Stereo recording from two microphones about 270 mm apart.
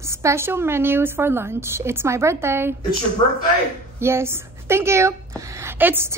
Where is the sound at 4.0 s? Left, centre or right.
Centre.